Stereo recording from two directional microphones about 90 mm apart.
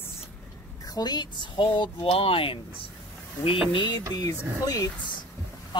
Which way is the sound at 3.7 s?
60° left (ahead or behind).